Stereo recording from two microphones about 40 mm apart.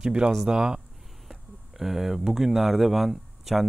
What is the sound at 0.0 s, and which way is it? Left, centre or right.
Speech, right.